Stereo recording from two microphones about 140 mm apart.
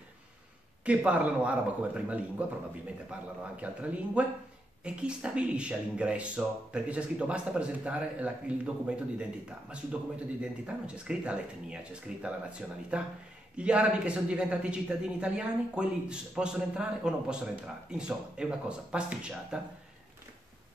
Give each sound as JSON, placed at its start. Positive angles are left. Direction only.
{"t": 0.8, "sound": "speech", "side_deg": -10}
{"t": 3.6, "sound": "speech", "side_deg": -10}